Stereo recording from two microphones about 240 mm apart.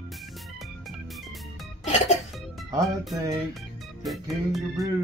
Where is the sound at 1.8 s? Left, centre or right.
Left.